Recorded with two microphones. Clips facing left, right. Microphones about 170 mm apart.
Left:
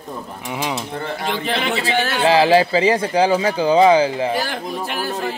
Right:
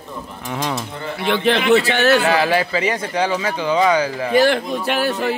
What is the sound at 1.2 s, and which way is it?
Speech, 70° right (ahead or behind).